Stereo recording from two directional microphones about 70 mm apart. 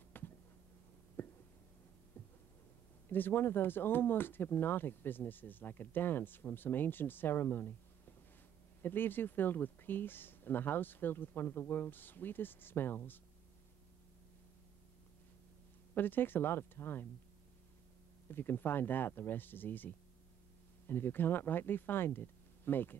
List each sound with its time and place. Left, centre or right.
0.2 s a sound: left
3.1 s speech: left
8.8 s speech: left
15.9 s speech: left
18.3 s speech: left